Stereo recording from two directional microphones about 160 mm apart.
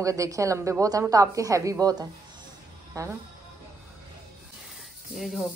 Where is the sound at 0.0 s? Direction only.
20° right (ahead or behind).